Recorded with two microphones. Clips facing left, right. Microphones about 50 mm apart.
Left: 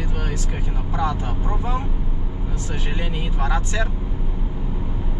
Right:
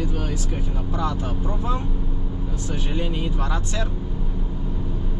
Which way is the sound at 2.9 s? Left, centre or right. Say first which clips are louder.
Right 3 dB; centre.